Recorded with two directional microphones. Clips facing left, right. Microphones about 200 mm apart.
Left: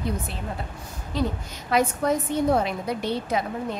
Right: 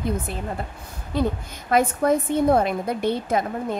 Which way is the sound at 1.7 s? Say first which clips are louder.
Right 3 dB; 55° right (ahead or behind).